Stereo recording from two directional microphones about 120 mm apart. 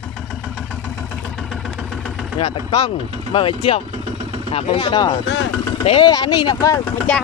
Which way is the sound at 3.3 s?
50° left (ahead or behind).